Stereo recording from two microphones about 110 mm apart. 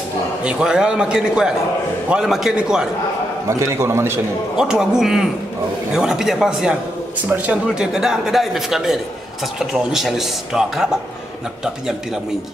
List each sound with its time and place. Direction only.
0.4 s a man's voice: 10° right (ahead or behind)
3.4 s a man's voice: 25° right (ahead or behind)
4.6 s speech: 5° right (ahead or behind)